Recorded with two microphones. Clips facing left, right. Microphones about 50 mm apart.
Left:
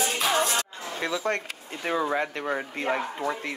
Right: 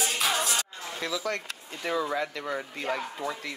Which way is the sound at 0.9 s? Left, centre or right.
Left.